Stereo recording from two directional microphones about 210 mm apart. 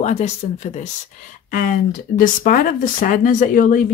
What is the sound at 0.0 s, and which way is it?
Speech, 30° left (ahead or behind).